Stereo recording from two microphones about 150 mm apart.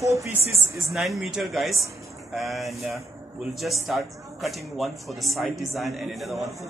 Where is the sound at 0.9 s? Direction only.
Centre (ahead or behind).